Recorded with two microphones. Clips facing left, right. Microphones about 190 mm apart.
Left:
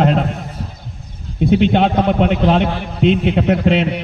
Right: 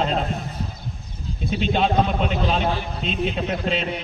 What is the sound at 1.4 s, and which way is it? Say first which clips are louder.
A man's voice: left 9 dB; 65° left (ahead or behind).